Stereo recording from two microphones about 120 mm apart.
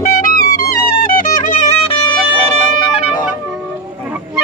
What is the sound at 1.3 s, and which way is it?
Music, 90° left.